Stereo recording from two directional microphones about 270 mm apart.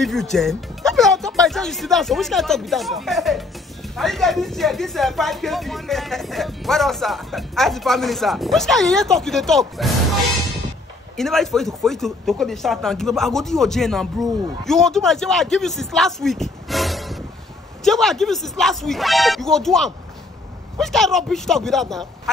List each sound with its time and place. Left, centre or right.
0.0 s speech: centre
11.1 s speech: centre